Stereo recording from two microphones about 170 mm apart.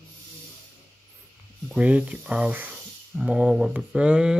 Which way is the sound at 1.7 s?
5° right (ahead or behind).